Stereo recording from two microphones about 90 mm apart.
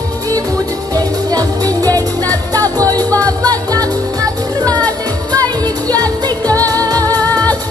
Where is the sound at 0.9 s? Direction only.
45° right (ahead or behind).